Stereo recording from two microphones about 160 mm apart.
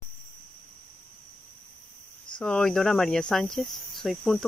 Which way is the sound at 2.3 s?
5° left (ahead or behind).